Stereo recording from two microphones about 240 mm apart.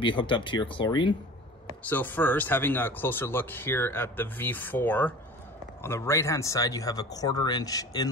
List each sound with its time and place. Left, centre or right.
0.0 s speech: centre
1.8 s speech: centre